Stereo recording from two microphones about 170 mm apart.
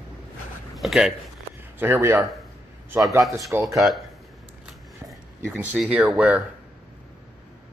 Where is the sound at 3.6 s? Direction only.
Centre (ahead or behind).